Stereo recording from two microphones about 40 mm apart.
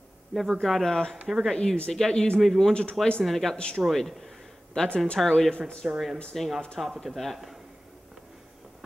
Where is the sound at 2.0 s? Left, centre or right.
Centre.